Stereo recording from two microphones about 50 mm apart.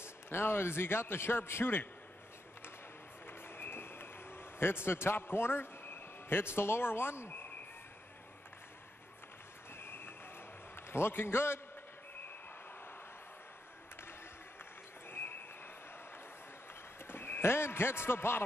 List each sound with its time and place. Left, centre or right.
0.0 s a man's voice: left
3.3 s a sound: left
9.8 s vehicle: left
10.9 s a man's voice: left
15.0 s a sound: left
17.1 s a man's voice: left